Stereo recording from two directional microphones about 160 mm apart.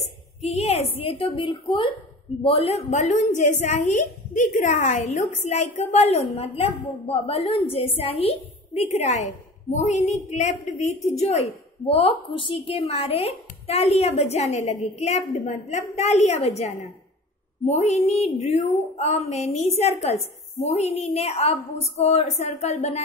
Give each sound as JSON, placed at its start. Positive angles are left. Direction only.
{"t": 0.4, "sound": "a woman's voice", "side_deg": 40}